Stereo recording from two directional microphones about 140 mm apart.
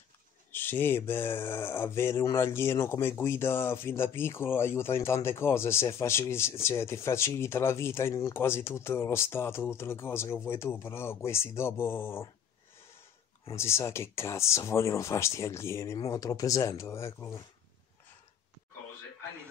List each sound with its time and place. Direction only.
0.5 s speech: 15° left (ahead or behind)
13.5 s speech: 20° left (ahead or behind)